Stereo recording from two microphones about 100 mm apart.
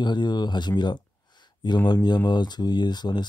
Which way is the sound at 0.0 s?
50° left (ahead or behind).